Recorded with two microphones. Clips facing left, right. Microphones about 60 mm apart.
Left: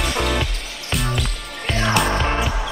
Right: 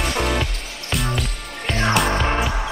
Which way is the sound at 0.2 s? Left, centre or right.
Centre.